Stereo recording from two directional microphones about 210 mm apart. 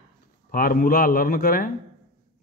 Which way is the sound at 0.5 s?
40° left (ahead or behind).